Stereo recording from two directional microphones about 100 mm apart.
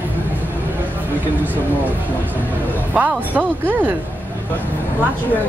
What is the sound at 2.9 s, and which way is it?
Speech, 15° right (ahead or behind).